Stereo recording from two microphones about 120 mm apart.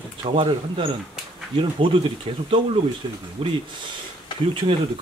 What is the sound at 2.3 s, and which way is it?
Speech, 50° right (ahead or behind).